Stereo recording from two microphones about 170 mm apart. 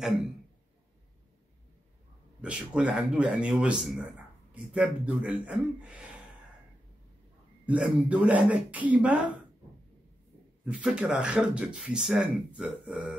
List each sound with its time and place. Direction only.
0.0 s speech: centre (ahead or behind)
2.4 s speech: 5° right (ahead or behind)
7.6 s speech: 5° right (ahead or behind)
10.6 s speech: 5° right (ahead or behind)